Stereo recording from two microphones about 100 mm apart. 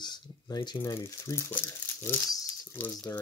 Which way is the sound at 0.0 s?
40° left (ahead or behind).